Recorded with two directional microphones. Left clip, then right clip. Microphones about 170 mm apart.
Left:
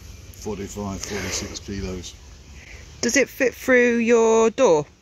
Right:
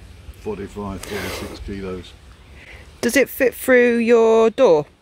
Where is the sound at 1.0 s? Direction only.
10° right (ahead or behind).